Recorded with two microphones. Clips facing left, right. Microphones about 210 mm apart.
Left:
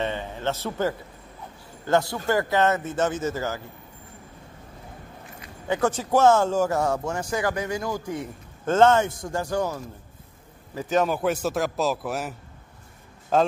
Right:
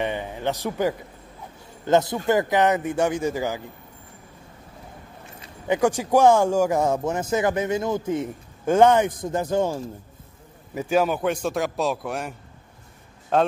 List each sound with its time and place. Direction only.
0.0 s speech: 15° right (ahead or behind)
5.7 s speech: 10° right (ahead or behind)
10.7 s a man's voice: 10° right (ahead or behind)